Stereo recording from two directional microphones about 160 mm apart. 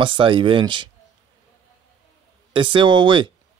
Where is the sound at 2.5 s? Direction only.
30° right (ahead or behind).